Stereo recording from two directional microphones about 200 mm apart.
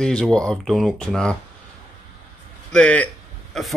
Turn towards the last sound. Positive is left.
turn(degrees=0)  # may be behind; listen again after turning